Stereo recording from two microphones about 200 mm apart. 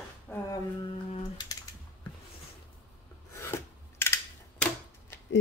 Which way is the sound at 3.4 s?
10° left (ahead or behind).